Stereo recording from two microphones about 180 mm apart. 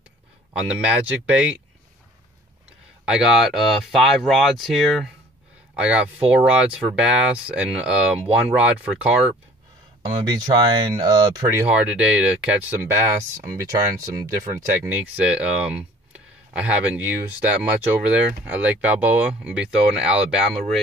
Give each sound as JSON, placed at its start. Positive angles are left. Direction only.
{"t": 0.5, "sound": "speech", "side_deg": -5}
{"t": 3.1, "sound": "speech", "side_deg": -5}
{"t": 10.0, "sound": "speech", "side_deg": -20}
{"t": 11.6, "sound": "speech", "side_deg": -5}
{"t": 14.9, "sound": "speech", "side_deg": -5}